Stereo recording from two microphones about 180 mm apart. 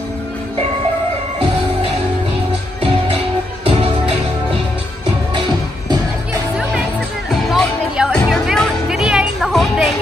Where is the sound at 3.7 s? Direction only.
35° right (ahead or behind).